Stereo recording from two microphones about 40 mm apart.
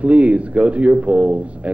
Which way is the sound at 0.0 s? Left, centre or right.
Right.